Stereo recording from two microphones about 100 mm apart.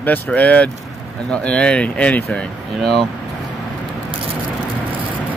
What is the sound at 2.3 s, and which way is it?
Speech, 5° left (ahead or behind).